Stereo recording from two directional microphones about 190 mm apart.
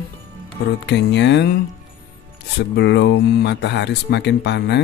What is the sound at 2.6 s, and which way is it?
Speech, 65° left (ahead or behind).